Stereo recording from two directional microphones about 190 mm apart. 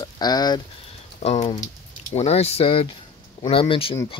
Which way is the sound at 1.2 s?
35° left (ahead or behind).